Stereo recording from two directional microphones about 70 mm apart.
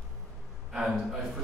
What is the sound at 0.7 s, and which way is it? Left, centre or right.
Speech, centre.